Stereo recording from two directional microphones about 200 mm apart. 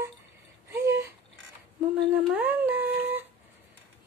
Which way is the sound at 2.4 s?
10° right (ahead or behind).